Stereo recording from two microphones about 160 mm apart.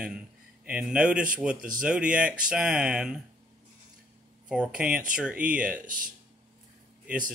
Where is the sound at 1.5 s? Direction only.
60° right (ahead or behind).